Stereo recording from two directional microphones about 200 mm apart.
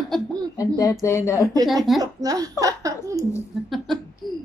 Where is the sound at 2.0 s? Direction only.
20° right (ahead or behind).